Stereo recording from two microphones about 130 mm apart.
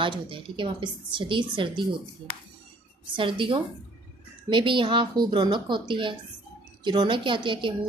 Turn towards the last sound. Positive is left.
turn(degrees=-40)  # may be behind; listen again after turning